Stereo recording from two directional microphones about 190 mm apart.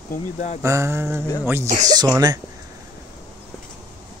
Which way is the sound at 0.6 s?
15° right (ahead or behind).